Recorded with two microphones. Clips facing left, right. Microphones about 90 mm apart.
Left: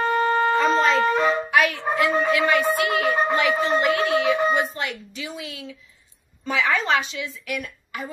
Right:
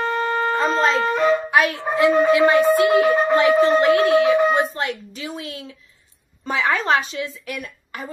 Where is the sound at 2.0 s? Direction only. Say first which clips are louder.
Right 6 dB; 30° right (ahead or behind).